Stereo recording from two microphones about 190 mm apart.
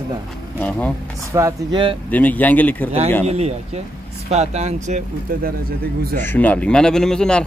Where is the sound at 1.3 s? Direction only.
15° right (ahead or behind).